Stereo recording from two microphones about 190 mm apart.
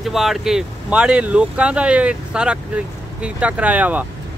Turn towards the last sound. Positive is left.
turn(degrees=-10)  # may be behind; listen again after turning